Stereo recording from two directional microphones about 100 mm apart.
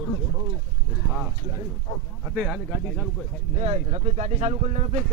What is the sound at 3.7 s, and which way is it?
Speech, 85° right.